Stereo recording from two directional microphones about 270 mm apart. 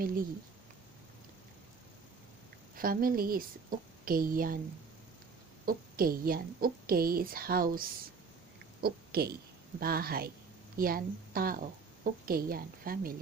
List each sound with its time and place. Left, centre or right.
2.7 s a woman's voice: right
5.7 s a woman's voice: right